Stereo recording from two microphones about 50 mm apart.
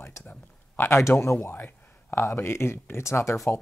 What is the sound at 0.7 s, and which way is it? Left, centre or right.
Speech, left.